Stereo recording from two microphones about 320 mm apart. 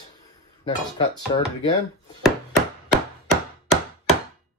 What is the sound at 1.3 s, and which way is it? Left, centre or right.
Speech, centre.